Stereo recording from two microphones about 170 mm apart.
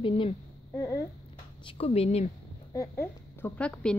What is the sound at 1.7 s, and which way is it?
Speech, 35° left (ahead or behind).